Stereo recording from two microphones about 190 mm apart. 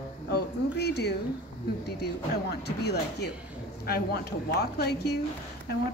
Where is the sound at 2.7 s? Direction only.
60° left (ahead or behind).